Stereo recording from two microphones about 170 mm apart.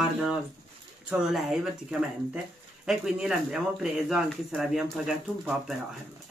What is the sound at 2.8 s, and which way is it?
Speech, 5° right (ahead or behind).